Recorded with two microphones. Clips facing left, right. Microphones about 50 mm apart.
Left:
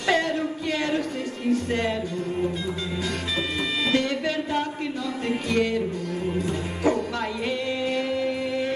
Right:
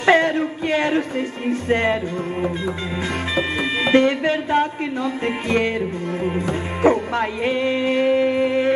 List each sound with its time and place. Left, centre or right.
0.0 s a sound: right
1.5 s music: right
3.3 s speech: right
5.2 s music: right